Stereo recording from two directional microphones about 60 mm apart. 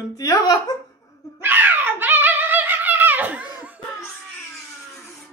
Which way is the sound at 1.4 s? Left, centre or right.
Right.